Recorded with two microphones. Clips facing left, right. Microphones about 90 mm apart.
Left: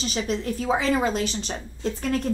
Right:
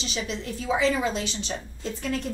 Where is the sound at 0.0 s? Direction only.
40° left (ahead or behind).